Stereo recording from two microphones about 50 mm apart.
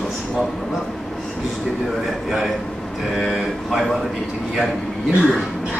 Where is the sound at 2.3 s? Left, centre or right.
Centre.